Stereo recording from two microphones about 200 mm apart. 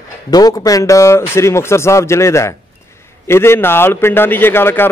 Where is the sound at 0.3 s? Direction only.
20° left (ahead or behind).